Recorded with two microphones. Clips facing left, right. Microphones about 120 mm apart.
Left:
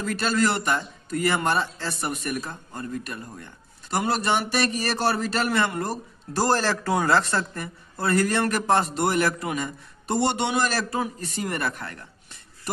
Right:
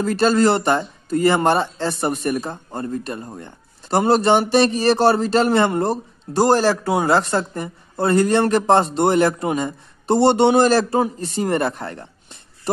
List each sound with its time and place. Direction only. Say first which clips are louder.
0.0 s a man's voice: right 8 dB; 30° right (ahead or behind)
6.4 s a man's voice: right 7 dB; 15° right (ahead or behind)